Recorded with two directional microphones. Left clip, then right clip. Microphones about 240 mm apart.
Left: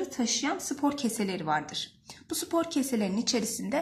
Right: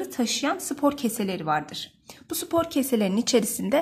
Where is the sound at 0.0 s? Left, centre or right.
Right.